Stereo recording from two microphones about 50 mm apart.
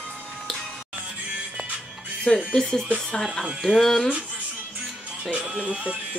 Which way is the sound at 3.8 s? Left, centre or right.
Centre.